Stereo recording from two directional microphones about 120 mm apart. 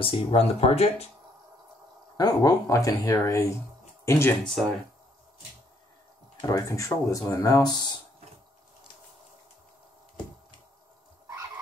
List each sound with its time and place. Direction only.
0.0 s speech: 45° left (ahead or behind)
2.1 s speech: 30° left (ahead or behind)
4.5 s speech: centre (ahead or behind)
6.4 s speech: 30° left (ahead or behind)